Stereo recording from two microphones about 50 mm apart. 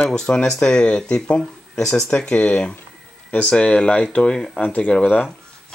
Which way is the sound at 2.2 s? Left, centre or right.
Centre.